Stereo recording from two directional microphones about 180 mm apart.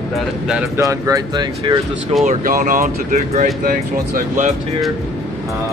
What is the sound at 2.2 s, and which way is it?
Speech, 45° right (ahead or behind).